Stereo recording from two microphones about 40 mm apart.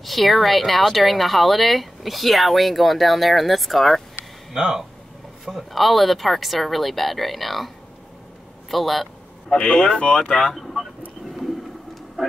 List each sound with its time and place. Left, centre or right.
0.0 s speech: centre
4.6 s speech: centre
5.4 s speech: centre
9.6 s speech: centre
10.5 s vehicle: centre